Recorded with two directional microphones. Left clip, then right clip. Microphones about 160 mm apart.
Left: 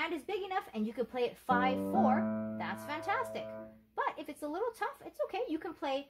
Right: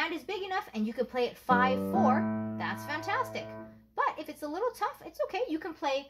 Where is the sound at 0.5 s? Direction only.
35° left (ahead or behind).